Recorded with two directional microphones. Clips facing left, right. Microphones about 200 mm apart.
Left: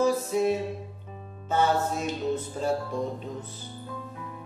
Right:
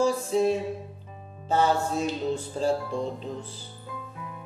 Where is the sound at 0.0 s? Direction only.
30° right (ahead or behind).